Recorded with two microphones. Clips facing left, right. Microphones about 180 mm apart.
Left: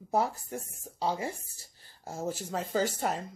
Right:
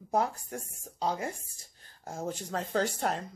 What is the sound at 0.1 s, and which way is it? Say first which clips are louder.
Speech: even; 5° left (ahead or behind).